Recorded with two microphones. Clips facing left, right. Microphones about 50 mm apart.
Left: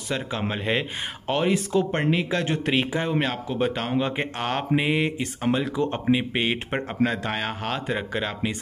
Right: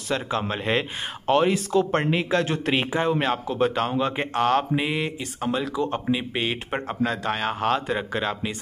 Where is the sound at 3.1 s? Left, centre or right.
Centre.